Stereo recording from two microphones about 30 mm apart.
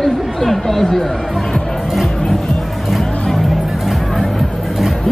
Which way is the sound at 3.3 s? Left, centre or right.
Centre.